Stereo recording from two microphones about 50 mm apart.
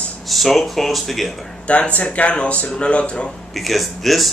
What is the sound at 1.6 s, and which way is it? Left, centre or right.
Speech, left.